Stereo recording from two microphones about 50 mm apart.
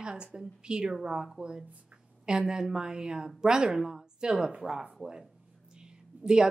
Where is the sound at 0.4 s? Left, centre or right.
Centre.